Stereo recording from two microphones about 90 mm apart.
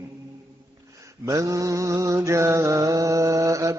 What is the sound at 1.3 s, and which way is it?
Mantra, 35° right (ahead or behind).